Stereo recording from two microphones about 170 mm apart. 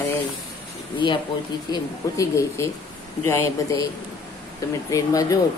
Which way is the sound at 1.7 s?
20° left (ahead or behind).